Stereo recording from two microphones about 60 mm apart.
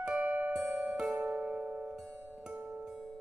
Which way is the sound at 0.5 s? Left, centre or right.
Centre.